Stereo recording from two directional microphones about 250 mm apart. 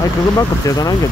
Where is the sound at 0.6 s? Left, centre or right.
Centre.